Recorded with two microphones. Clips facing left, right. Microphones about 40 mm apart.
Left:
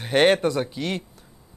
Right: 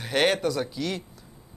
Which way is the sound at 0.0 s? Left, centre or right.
Left.